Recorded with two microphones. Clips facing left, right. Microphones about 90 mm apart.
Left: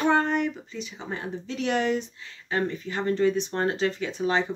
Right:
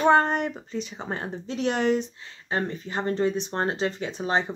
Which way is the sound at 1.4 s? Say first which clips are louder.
Right 2 dB; 30° right (ahead or behind).